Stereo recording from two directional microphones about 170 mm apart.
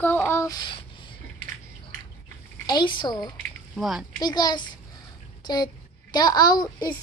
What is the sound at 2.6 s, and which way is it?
Speech, 25° left (ahead or behind).